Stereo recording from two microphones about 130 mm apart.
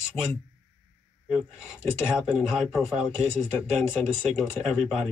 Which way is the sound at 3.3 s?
20° left (ahead or behind).